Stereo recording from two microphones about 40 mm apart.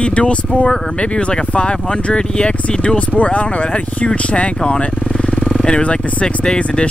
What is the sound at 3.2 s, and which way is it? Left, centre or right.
Speech, left.